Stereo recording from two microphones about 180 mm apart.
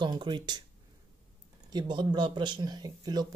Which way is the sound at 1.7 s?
25° right (ahead or behind).